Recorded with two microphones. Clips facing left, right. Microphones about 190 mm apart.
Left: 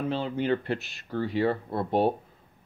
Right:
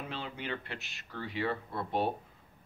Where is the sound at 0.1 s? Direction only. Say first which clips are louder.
Left 13 dB; 35° left (ahead or behind).